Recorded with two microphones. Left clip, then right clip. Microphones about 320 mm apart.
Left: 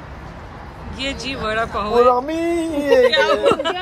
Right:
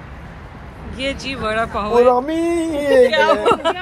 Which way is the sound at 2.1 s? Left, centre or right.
Right.